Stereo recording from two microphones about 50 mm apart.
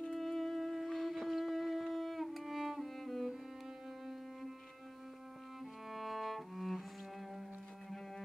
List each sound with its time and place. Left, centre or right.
0.1 s music: centre
5.9 s cello: centre